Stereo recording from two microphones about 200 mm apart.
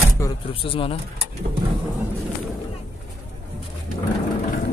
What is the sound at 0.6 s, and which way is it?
Speech, 25° left (ahead or behind).